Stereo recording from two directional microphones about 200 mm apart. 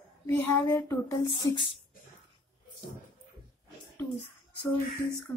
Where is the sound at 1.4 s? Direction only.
25° left (ahead or behind).